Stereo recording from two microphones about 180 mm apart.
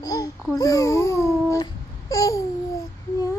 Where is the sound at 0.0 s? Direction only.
20° left (ahead or behind).